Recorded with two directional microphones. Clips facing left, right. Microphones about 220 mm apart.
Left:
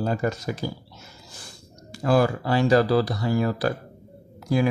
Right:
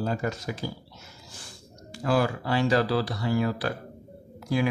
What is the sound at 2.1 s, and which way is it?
Speech, 45° left (ahead or behind).